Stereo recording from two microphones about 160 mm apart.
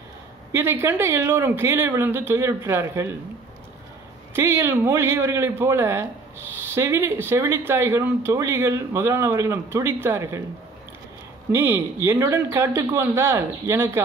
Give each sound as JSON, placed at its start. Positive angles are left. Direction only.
{"t": 0.5, "sound": "speech", "side_deg": -15}
{"t": 4.3, "sound": "speech", "side_deg": -15}
{"t": 11.5, "sound": "speech", "side_deg": -15}